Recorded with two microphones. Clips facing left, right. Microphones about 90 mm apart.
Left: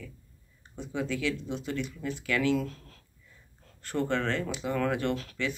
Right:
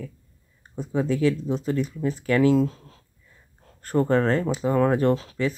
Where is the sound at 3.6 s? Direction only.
40° right (ahead or behind).